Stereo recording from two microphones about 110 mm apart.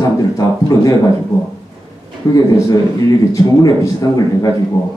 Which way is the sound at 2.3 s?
35° left (ahead or behind).